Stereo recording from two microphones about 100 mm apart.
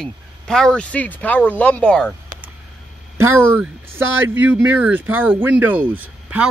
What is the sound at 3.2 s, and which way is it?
Speech, 25° right (ahead or behind).